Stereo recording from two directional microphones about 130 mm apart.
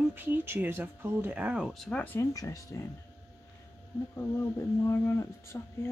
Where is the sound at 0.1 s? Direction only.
15° right (ahead or behind); by 2.2 s 10° left (ahead or behind).